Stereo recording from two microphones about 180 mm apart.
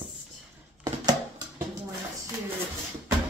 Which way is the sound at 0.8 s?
20° right (ahead or behind).